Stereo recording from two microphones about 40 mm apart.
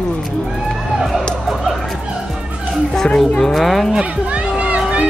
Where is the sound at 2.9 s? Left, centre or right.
Centre.